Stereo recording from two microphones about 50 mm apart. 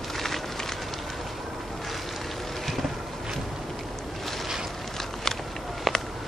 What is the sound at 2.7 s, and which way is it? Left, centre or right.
Vehicle, centre.